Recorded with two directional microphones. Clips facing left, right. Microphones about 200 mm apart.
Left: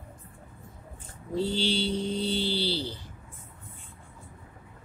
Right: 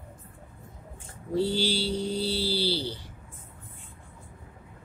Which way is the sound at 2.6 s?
10° right (ahead or behind).